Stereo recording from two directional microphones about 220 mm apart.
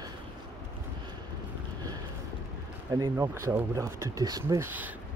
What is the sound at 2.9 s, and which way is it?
Speech, 15° right (ahead or behind).